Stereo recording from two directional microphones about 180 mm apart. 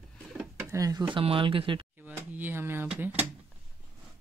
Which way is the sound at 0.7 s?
20° right (ahead or behind).